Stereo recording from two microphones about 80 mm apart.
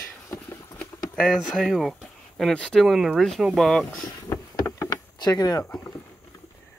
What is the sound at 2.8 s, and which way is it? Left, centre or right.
Speech, centre.